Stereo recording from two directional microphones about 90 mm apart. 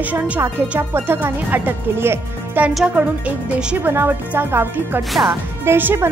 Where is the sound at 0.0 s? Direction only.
15° right (ahead or behind).